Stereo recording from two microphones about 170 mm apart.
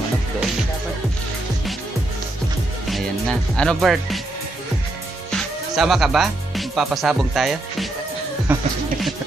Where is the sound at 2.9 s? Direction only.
5° left (ahead or behind).